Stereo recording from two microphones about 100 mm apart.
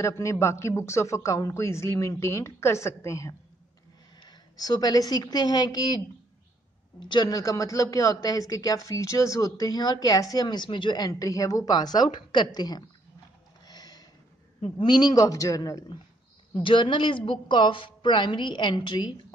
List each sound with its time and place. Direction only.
0.0 s a man's voice: 30° left (ahead or behind)
4.2 s a woman's voice: 40° left (ahead or behind)
13.7 s a sound: 40° left (ahead or behind)
14.8 s speech: 45° left (ahead or behind)
16.5 s a woman's voice: 55° left (ahead or behind)